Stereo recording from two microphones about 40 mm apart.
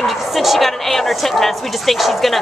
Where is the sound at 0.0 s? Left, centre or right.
Centre.